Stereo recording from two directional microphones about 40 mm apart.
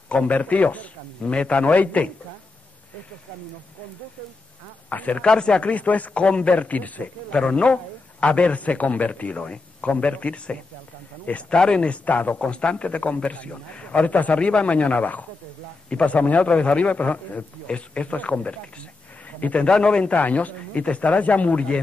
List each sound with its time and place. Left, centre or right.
0.1 s a man's voice: left
4.8 s a man's voice: left
5.2 s a man's voice: left
6.2 s a man's voice: left
7.2 s a man's voice: left
12.4 s a man's voice: left
15.9 s a man's voice: left
16.2 s a man's voice: left
19.7 s a man's voice: left
20.1 s a man's voice: left